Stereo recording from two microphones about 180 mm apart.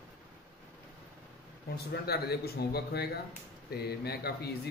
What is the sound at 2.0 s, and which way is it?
A man's voice, 60° left (ahead or behind).